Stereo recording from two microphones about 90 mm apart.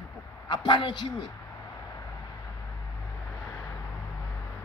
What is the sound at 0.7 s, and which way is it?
Speech, 60° left (ahead or behind).